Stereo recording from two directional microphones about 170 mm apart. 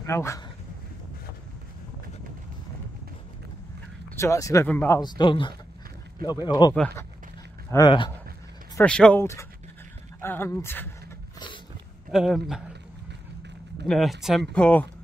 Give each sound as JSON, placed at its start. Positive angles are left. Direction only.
{"t": 0.0, "sound": "speech", "side_deg": 15}
{"t": 4.1, "sound": "speech", "side_deg": 15}
{"t": 7.7, "sound": "speech", "side_deg": 25}
{"t": 8.8, "sound": "speech", "side_deg": 5}
{"t": 12.1, "sound": "speech", "side_deg": -5}
{"t": 13.8, "sound": "speech", "side_deg": 0}